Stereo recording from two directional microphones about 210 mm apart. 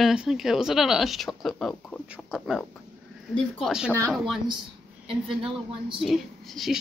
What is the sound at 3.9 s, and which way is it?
Speech, 5° left (ahead or behind).